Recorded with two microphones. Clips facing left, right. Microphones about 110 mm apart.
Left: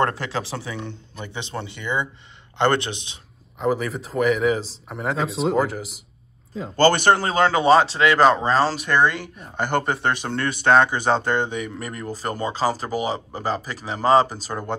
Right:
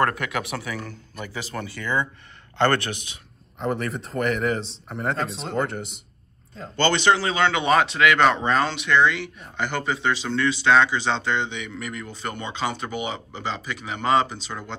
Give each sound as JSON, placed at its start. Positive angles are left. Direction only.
{"t": 0.0, "sound": "speech", "side_deg": 30}
{"t": 3.5, "sound": "speech", "side_deg": 0}
{"t": 6.8, "sound": "speech", "side_deg": 45}